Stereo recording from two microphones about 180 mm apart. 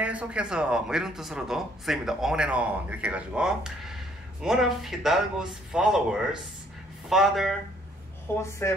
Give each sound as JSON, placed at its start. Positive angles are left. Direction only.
{"t": 0.0, "sound": "speech", "side_deg": -5}
{"t": 8.4, "sound": "speech", "side_deg": 15}